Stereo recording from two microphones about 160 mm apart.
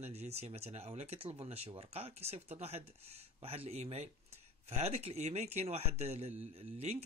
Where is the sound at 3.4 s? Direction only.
40° right (ahead or behind).